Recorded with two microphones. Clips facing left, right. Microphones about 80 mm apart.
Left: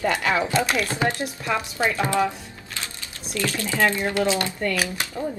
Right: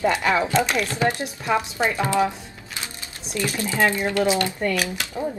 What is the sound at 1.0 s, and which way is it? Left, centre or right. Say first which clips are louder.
Speech: right 2 dB; right.